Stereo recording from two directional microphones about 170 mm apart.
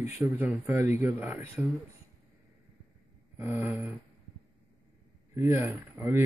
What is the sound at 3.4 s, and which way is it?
Speech, 10° right (ahead or behind).